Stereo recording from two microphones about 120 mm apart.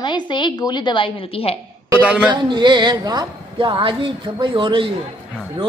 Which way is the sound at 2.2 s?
40° right (ahead or behind).